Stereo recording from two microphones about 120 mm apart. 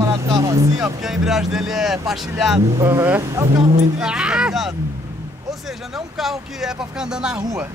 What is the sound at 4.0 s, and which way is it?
Speech, 5° right (ahead or behind).